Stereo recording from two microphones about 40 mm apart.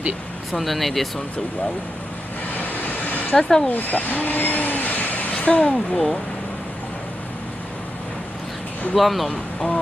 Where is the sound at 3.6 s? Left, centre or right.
Left.